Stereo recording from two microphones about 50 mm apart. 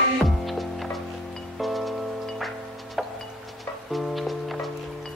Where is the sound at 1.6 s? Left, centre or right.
Centre.